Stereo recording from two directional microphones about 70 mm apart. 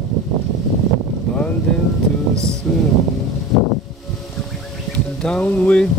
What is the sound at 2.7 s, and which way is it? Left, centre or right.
Speech, centre.